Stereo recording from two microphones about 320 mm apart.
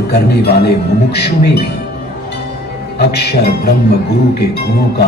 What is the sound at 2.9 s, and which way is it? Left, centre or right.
Speech, left.